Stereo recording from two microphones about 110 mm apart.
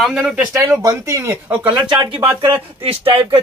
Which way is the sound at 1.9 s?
55° right (ahead or behind).